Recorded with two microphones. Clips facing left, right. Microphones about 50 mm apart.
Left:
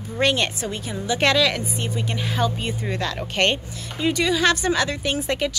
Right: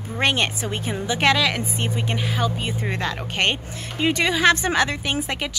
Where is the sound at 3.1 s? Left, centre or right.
Centre.